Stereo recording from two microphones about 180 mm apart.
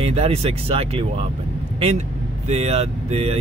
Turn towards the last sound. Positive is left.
turn(degrees=-35)  # may be behind; listen again after turning